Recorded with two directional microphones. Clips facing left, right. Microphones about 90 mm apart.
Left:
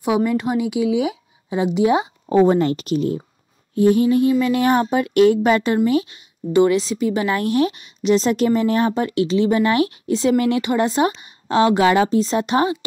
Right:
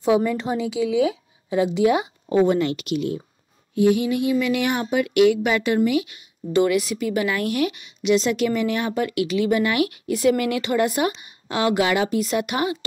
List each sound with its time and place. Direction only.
0.0 s a woman's voice: 15° left (ahead or behind); by 12.7 s 30° left (ahead or behind)